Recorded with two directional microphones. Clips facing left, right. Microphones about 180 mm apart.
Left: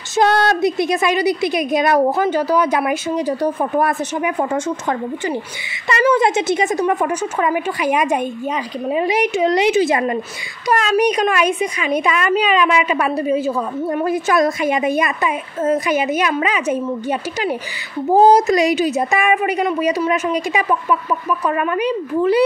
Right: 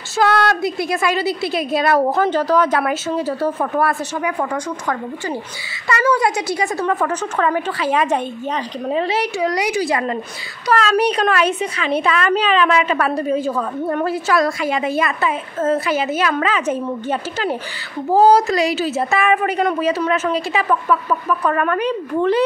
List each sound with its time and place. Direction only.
0.1 s a woman's voice: 20° left (ahead or behind)